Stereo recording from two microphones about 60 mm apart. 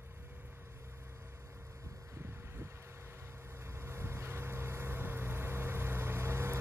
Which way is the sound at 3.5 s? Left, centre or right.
Right.